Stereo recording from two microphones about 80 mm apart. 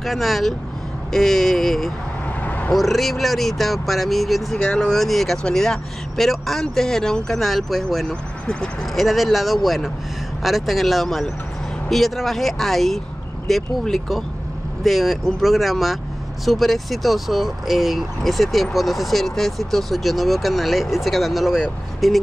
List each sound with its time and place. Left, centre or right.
0.0 s speech: centre
2.4 s vehicle: left
2.7 s speech: centre